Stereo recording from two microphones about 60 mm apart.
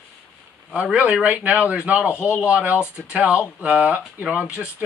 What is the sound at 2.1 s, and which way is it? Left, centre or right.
Speech, left.